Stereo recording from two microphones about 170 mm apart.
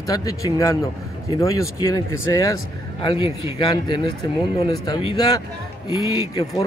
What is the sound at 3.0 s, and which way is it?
Speech, 30° left (ahead or behind).